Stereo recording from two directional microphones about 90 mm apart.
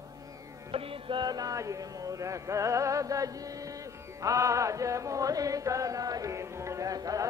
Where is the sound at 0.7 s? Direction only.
90° right.